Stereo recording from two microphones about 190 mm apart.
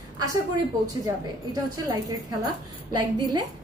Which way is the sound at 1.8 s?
20° right (ahead or behind).